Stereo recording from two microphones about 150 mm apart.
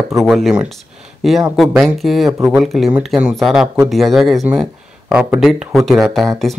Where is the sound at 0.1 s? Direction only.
Centre (ahead or behind).